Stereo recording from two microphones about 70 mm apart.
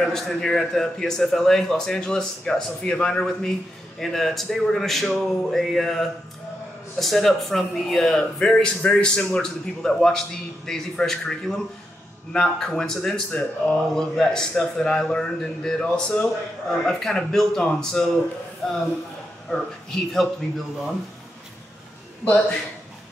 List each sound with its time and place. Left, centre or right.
0.0 s speech: centre
22.2 s a man's voice: centre